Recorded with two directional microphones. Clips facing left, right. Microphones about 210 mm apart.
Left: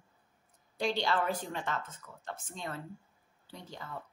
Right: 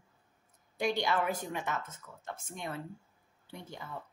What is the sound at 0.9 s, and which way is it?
A woman's voice, 15° right (ahead or behind).